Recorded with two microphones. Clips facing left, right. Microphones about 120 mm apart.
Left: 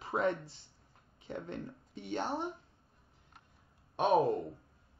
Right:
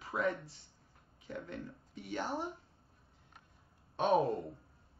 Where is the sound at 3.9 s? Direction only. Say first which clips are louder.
Left 2 dB; 15° left (ahead or behind).